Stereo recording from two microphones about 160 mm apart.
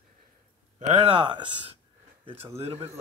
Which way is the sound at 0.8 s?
35° right (ahead or behind).